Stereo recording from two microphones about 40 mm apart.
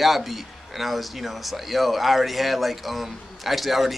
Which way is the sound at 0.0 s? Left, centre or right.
Centre.